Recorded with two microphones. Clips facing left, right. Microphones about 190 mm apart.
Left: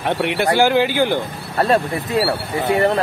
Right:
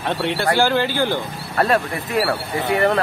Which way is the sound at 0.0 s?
15° left (ahead or behind).